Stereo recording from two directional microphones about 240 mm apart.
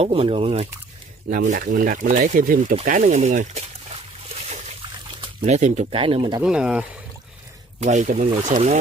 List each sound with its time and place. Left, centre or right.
0.0 s speech: right
5.4 s speech: right
6.4 s speech: centre
7.8 s speech: right